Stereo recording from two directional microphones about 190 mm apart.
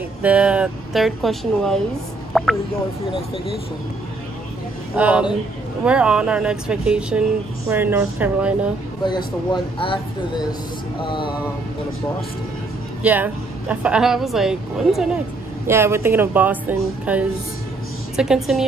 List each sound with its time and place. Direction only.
0.2 s speech: 5° right (ahead or behind)
2.3 s a sound: centre (ahead or behind)
4.9 s speech: 5° right (ahead or behind)
9.0 s speech: 25° left (ahead or behind)
13.0 s speech: 10° right (ahead or behind)
15.6 s speech: 15° right (ahead or behind)